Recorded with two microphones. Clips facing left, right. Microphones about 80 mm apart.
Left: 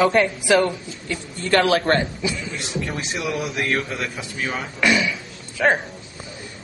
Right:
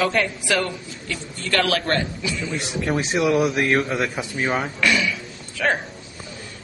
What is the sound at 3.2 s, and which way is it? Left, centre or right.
Speech, right.